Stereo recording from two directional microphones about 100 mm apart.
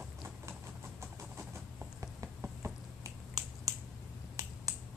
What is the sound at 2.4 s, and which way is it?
Finger snapping, 30° right (ahead or behind).